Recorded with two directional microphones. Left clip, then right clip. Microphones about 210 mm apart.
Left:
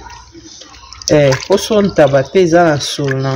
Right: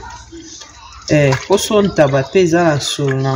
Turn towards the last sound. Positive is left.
turn(degrees=15)  # may be behind; listen again after turning